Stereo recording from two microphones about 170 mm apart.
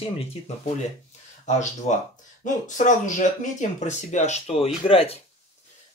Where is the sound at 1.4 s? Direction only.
45° left (ahead or behind).